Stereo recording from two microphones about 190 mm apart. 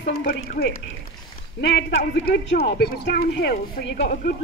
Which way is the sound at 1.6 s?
65° left (ahead or behind).